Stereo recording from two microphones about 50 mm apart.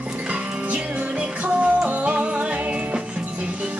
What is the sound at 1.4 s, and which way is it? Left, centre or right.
Music, right.